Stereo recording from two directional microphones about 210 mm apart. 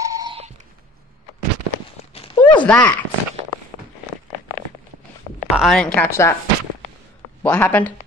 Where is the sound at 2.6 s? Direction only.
5° left (ahead or behind).